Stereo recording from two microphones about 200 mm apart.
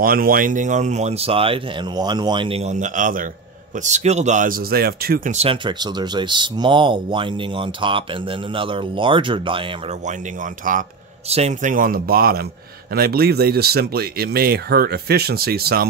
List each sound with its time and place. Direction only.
0.0 s speech: 45° right (ahead or behind)
5.3 s speech: 30° right (ahead or behind)
10.0 s speech: 40° right (ahead or behind)